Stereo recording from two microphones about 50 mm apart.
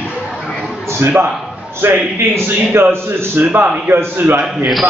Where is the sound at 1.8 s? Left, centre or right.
Right.